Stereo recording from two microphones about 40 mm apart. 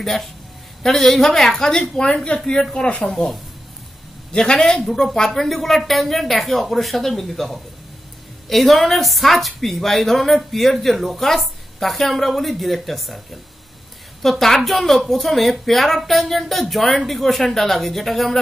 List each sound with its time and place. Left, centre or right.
0.0 s speech: centre
3.0 s a woman's voice: centre
14.4 s a woman's voice: centre